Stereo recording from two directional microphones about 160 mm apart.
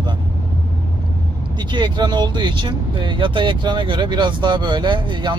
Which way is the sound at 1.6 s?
30° right (ahead or behind).